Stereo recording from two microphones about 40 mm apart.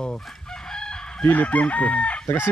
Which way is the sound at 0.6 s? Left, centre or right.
Centre.